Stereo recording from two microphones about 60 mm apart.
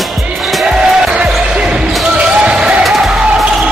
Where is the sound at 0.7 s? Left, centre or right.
Centre.